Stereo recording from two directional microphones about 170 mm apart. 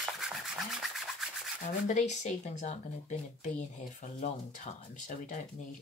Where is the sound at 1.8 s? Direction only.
45° left (ahead or behind).